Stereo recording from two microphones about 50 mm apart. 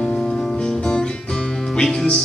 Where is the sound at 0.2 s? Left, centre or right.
Centre.